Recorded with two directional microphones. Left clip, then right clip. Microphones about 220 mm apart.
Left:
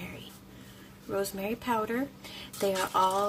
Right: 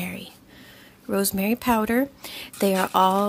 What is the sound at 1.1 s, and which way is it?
A woman's voice, 45° right (ahead or behind).